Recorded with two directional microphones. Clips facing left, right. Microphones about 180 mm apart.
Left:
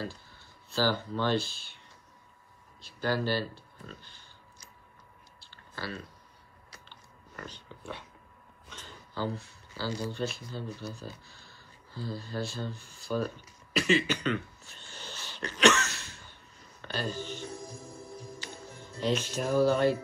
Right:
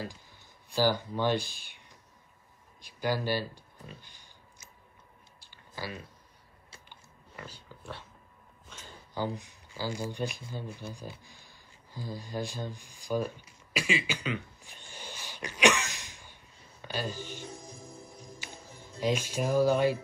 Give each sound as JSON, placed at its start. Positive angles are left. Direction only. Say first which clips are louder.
{"t": 0.0, "sound": "speech", "louder": "left 2 dB", "side_deg": -15}
{"t": 2.8, "sound": "speech", "louder": "left 1 dB", "side_deg": -15}
{"t": 5.4, "sound": "clicking", "louder": "even", "side_deg": -15}
{"t": 6.9, "sound": "biting", "louder": "left 1 dB", "side_deg": -10}
{"t": 8.6, "sound": "a sound", "louder": "left 1 dB", "side_deg": -10}
{"t": 16.8, "sound": "speech", "louder": "left 1 dB", "side_deg": -10}
{"t": 18.9, "sound": "speech", "louder": "even", "side_deg": -10}